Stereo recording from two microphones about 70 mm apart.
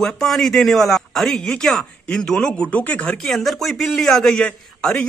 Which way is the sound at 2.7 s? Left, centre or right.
Left.